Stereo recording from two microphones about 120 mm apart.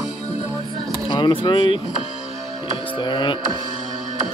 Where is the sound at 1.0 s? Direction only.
40° left (ahead or behind).